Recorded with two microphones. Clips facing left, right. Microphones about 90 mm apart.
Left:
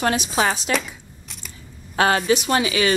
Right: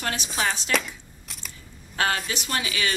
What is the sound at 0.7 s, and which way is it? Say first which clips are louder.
Speech: left 3 dB; 5° left (ahead or behind).